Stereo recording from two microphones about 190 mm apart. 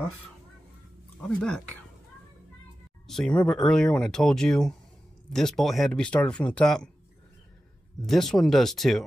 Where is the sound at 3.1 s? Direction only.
5° left (ahead or behind).